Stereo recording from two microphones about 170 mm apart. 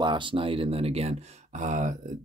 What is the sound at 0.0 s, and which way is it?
Speech, 30° right (ahead or behind).